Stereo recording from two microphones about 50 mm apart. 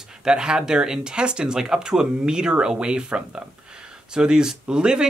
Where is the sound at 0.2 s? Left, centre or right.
Centre.